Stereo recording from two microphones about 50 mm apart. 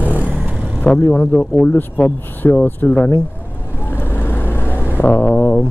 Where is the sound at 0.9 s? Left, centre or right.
Left.